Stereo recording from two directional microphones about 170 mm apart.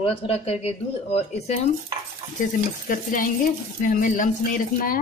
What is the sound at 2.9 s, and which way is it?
Speech, 50° left (ahead or behind).